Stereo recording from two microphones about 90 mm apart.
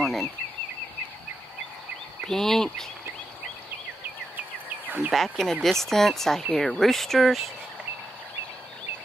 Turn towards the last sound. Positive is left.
turn(degrees=0)  # may be behind; listen again after turning